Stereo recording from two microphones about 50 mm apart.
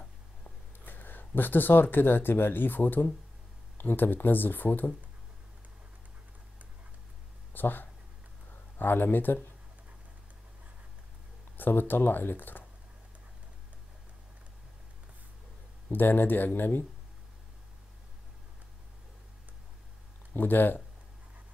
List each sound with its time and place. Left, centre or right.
0.7 s speech: left
7.5 s speech: left
11.5 s speech: left
15.9 s speech: left
20.3 s speech: left